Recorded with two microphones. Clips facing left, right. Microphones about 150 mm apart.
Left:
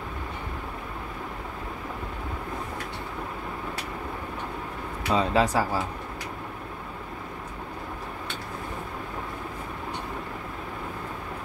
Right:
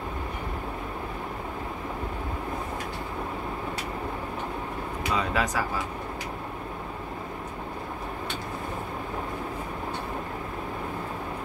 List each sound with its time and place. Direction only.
5.1 s speech: 30° left (ahead or behind)